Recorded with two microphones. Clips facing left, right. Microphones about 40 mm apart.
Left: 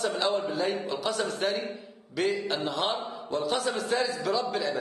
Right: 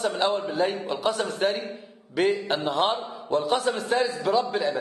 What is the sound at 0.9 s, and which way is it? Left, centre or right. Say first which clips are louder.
A man's voice: right 3 dB; right.